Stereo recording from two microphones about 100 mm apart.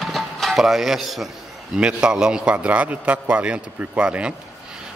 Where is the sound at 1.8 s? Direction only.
10° right (ahead or behind).